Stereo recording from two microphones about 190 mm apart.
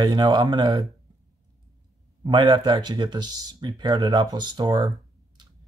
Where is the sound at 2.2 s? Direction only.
25° right (ahead or behind).